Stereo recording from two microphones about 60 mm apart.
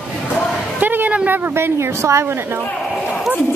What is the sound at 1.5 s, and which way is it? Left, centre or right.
Speech, right.